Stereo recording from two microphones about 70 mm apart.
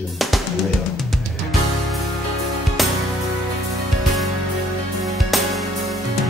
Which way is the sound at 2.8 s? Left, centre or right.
Centre.